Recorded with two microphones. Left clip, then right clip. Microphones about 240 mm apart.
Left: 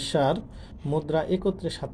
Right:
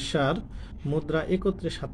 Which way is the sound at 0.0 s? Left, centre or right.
Centre.